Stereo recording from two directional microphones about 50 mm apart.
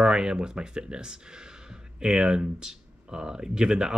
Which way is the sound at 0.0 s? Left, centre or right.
Centre.